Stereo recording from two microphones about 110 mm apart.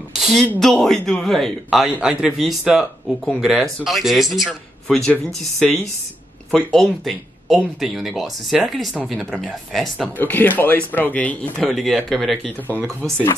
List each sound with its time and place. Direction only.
0.2 s a sound: centre (ahead or behind)
0.6 s a man's voice: 5° left (ahead or behind)
10.1 s speech: 15° left (ahead or behind)
11.7 s a man's voice: centre (ahead or behind)